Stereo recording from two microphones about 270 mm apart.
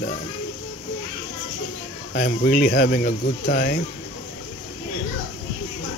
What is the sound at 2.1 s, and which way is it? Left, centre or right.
Speech, left.